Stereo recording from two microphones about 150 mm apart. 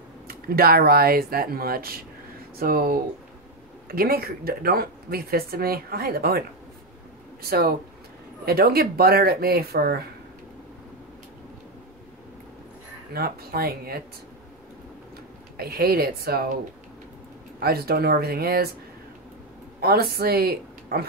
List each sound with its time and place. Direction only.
0.3 s speech: 85° right
7.4 s speech: 90° right
13.1 s speech: 90° right
15.5 s speech: 90° right
17.6 s speech: 90° right
19.8 s a woman's voice: 90° right